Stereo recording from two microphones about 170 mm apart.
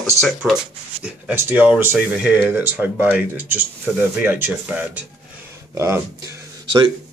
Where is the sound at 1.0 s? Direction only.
10° right (ahead or behind).